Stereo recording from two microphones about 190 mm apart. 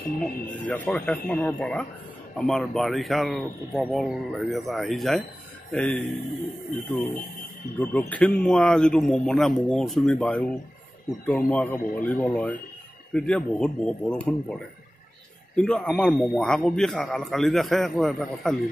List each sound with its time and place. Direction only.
0.2 s a man's voice: 5° left (ahead or behind)
7.8 s a man's voice: 10° left (ahead or behind)